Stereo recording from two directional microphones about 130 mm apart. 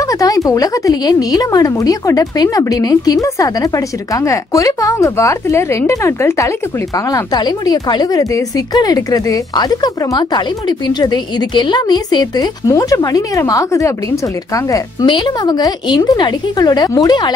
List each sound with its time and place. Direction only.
0.0 s a woman's voice: 25° left (ahead or behind)